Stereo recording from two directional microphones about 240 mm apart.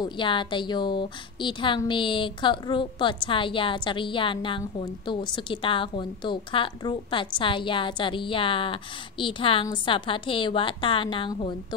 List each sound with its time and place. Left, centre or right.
0.0 s a woman's voice: centre